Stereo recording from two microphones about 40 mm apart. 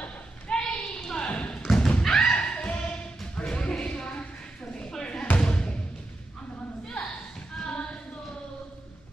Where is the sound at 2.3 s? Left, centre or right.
Left.